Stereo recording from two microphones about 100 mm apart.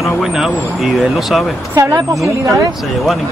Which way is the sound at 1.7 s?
35° right (ahead or behind).